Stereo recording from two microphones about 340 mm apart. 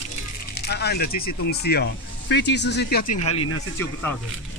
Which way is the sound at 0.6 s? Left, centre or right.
Left.